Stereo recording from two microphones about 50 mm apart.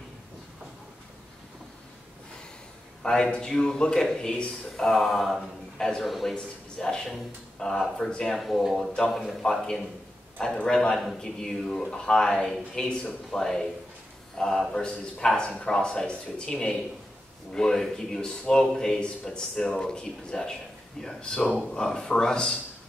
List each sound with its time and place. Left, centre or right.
3.0 s a man's voice: centre
8.4 s a man's voice: centre
9.4 s a man's voice: centre